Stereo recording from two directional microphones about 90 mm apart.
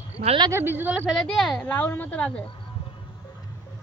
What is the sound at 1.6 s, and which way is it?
Speech, 15° left (ahead or behind).